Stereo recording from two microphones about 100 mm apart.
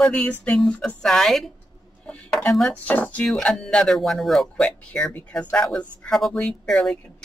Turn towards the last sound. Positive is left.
turn(degrees=5)  # may be behind; listen again after turning